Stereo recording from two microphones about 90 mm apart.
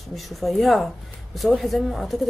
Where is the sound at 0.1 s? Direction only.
Centre (ahead or behind).